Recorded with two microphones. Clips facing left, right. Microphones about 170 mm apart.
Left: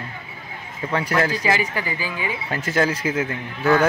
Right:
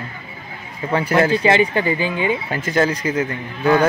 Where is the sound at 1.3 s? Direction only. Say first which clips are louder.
Right 7 dB; 25° right (ahead or behind).